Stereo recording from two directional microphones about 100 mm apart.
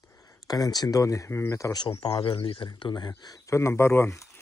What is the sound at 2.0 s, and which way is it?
Speech, 60° left (ahead or behind).